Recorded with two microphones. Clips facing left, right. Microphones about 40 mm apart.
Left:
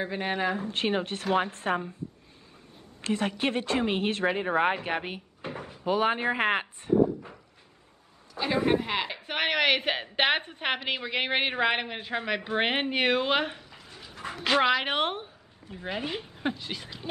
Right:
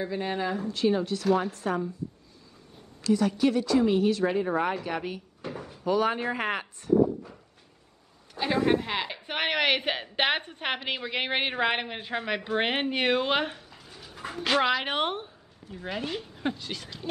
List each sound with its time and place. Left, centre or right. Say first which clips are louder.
0.0 s a woman's voice: left 1 dB; left
3.0 s a woman's voice: right 4 dB; left
4.7 s drawer open or close: even; left
5.7 s speech: even; left
8.6 s a woman's voice: even; centre
13.6 s dog: left 1 dB; left
13.8 s dog: even; centre
14.4 s speech: left 1 dB; centre
15.7 s speech: even; centre